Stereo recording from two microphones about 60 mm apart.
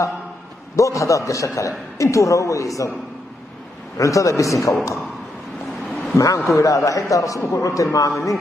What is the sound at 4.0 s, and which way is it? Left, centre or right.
Speech, left.